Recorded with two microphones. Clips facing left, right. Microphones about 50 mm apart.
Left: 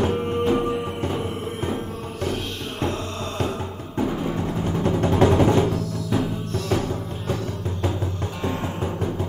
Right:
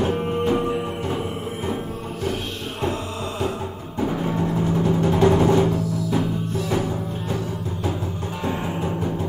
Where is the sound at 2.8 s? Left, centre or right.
Centre.